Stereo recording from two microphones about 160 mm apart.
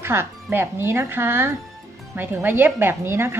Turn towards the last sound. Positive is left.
turn(degrees=-15)  # may be behind; listen again after turning